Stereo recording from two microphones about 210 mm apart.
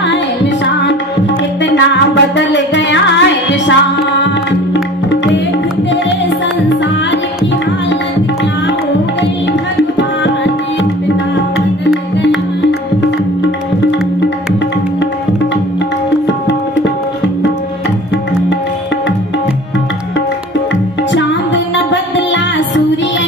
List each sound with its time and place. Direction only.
1.6 s music: 60° left (ahead or behind)
9.5 s tabla: 55° left (ahead or behind)
16.4 s tabla: 60° left (ahead or behind)
21.7 s music: 60° left (ahead or behind)